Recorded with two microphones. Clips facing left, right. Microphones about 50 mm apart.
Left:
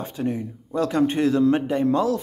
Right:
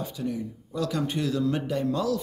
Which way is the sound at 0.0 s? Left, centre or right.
Left.